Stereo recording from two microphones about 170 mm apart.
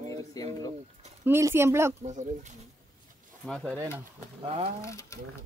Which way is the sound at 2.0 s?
45° right (ahead or behind).